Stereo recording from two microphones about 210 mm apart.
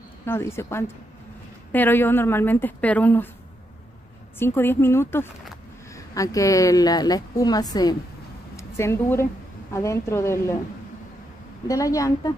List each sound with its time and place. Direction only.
0.2 s a woman's voice: 10° left (ahead or behind)
4.4 s a woman's voice: 10° left (ahead or behind)
11.6 s a woman's voice: 15° left (ahead or behind)